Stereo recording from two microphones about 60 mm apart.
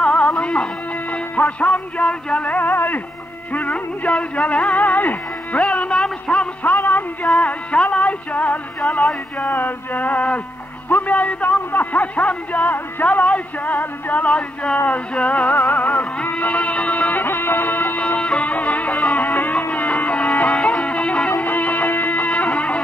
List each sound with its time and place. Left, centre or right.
0.0 s music: centre
3.5 s a man's voice: left
6.7 s music: left
7.3 s a man's voice: centre
8.8 s a sound: centre
9.4 s a man's voice: left
16.3 s music: left